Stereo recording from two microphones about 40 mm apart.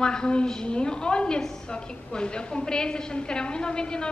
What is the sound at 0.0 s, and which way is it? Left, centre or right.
A woman's voice, left.